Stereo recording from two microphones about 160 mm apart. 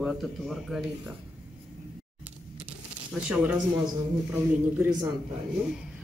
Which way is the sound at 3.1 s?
10° right (ahead or behind).